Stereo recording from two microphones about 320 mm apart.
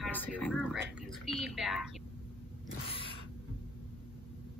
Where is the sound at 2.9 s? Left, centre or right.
Centre.